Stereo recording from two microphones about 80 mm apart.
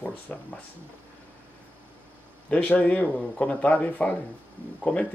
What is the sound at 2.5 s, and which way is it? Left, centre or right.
Speech, centre.